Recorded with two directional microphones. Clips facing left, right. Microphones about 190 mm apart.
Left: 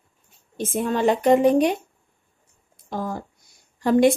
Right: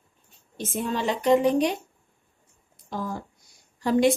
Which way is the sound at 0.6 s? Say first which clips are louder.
Left 6 dB; 55° left (ahead or behind).